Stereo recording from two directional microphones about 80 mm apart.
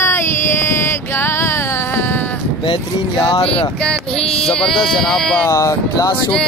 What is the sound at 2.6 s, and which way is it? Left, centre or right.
Speech, left.